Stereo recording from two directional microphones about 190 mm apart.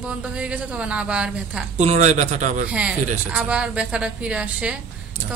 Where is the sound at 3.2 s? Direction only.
10° right (ahead or behind).